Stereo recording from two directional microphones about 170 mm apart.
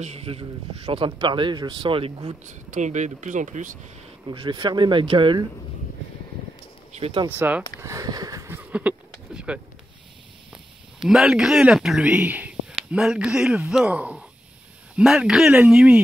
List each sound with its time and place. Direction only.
0.0 s a man's voice: 35° right (ahead or behind)
2.7 s speech: 45° right (ahead or behind)
4.3 s speech: 30° right (ahead or behind)
7.0 s speech: 35° right (ahead or behind)
7.2 s speech: 10° right (ahead or behind)
8.7 s a sound: 5° right (ahead or behind)
10.5 s speech: centre (ahead or behind)